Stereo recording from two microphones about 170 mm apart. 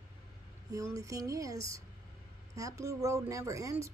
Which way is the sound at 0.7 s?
20° right (ahead or behind).